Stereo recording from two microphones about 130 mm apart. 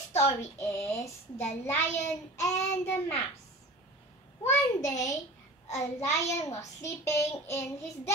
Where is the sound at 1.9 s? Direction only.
65° left (ahead or behind).